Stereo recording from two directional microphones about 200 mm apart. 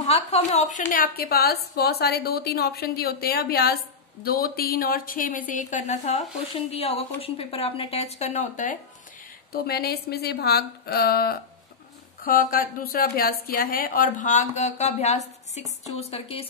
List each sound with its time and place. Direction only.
0.0 s a woman's voice: 30° left (ahead or behind)
9.5 s a woman's voice: 50° left (ahead or behind); by 16.4 s 30° left (ahead or behind)